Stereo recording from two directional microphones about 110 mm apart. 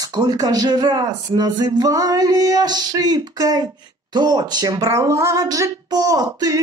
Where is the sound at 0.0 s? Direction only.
40° right (ahead or behind).